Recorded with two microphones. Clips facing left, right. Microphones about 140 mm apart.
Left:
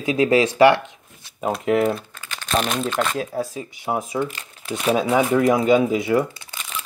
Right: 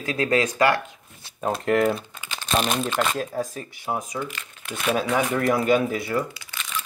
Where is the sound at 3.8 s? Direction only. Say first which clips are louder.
Left 5 dB; 20° left (ahead or behind).